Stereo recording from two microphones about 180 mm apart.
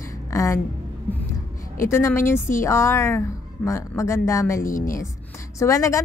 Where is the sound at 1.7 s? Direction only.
15° left (ahead or behind).